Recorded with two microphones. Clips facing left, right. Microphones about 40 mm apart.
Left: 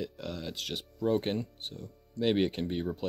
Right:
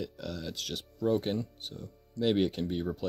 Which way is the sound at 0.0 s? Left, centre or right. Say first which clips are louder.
Even; left.